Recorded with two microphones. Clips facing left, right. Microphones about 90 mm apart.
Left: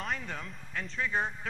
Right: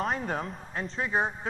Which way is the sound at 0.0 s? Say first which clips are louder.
Right 7 dB; 40° right (ahead or behind).